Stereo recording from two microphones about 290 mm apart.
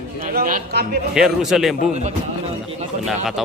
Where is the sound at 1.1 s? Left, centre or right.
Centre.